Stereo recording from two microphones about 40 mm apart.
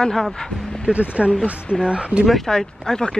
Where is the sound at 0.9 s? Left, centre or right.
Right.